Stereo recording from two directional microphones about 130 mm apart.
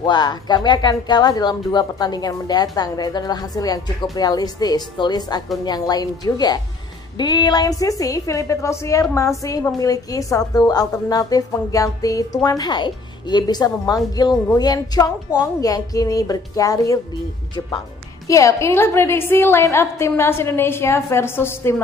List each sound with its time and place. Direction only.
0.0 s a woman's voice: 35° left (ahead or behind)
18.2 s a woman's voice: 25° left (ahead or behind)